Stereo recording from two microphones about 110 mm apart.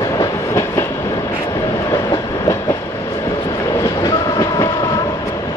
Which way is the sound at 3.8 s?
30° left (ahead or behind).